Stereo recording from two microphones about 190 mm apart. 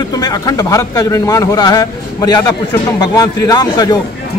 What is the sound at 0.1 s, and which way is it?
A man's voice, 20° left (ahead or behind).